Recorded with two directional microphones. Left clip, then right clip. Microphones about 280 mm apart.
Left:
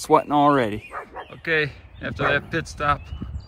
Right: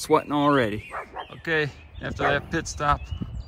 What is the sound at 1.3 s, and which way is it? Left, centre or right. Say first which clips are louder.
Speech: left 3 dB; centre.